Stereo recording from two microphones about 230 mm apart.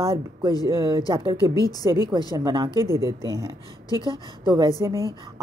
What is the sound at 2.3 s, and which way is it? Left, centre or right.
Speech, centre.